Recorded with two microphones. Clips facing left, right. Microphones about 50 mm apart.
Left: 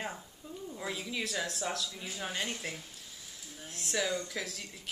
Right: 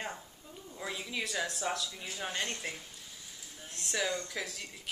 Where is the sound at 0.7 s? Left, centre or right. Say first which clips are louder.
Left 1 dB; centre.